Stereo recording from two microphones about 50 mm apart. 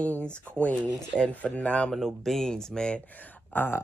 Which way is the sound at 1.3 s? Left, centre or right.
Left.